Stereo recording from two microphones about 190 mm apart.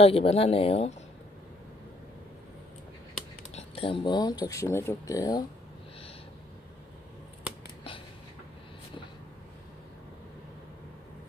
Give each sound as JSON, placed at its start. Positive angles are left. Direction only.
{"t": 0.0, "sound": "speech", "side_deg": 30}
{"t": 3.5, "sound": "speech", "side_deg": 30}